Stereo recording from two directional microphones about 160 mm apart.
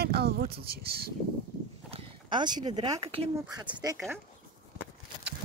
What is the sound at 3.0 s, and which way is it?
Speech, 35° right (ahead or behind).